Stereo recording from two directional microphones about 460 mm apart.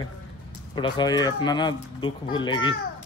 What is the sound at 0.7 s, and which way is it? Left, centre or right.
A man's voice, centre.